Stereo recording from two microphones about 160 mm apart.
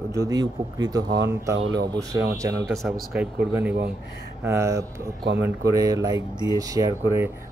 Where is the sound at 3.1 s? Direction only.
10° right (ahead or behind).